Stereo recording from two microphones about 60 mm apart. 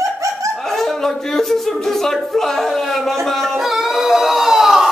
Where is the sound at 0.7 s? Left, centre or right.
Centre.